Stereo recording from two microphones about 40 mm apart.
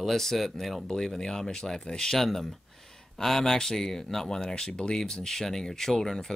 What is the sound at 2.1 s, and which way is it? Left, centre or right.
Speech, centre.